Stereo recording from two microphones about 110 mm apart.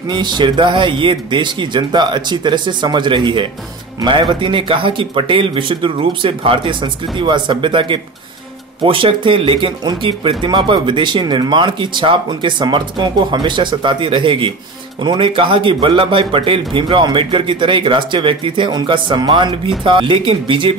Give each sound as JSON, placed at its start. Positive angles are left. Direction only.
{"t": 0.1, "sound": "speech", "side_deg": -40}